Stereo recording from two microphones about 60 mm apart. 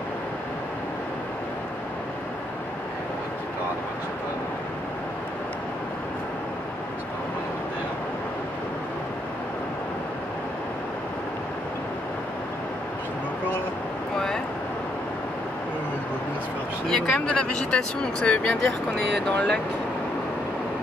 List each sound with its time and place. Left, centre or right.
14.1 s vehicle: centre
16.8 s speech: centre